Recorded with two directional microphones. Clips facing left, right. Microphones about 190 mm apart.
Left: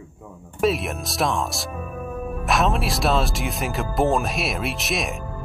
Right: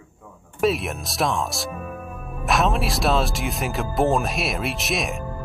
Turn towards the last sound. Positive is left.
turn(degrees=0)  # may be behind; listen again after turning